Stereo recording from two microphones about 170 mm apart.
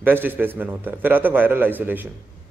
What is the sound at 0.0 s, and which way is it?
A man's voice, 10° right (ahead or behind).